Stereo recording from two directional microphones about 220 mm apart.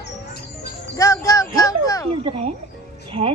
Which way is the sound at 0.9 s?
15° left (ahead or behind).